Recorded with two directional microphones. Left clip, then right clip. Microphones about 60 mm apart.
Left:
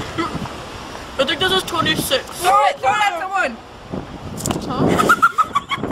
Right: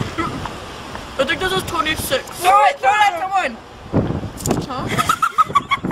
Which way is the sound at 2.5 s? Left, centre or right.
Right.